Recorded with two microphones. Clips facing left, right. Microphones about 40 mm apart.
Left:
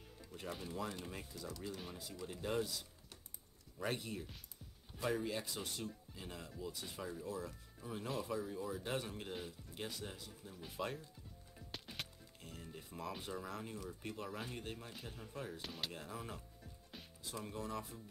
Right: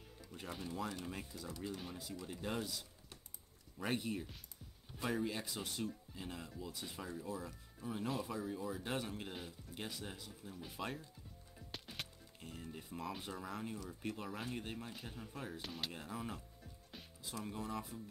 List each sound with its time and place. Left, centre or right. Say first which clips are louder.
0.3 s speech: even; centre
1.5 s speech: right 2 dB; centre
1.8 s speech: right 1 dB; centre
3.8 s speech: right 2 dB; centre
11.5 s music: even; centre
13.8 s speech: right 1 dB; centre